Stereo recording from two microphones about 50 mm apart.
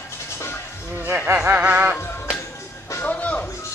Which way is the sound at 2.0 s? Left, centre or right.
Left.